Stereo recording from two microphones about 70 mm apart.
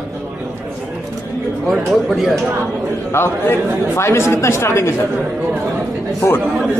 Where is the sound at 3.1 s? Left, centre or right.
Left.